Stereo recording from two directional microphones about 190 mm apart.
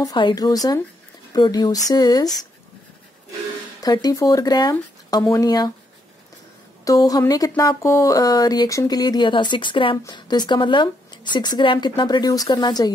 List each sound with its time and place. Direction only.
0.0 s speech: 25° left (ahead or behind)
3.8 s speech: 20° left (ahead or behind)
6.8 s speech: 20° left (ahead or behind)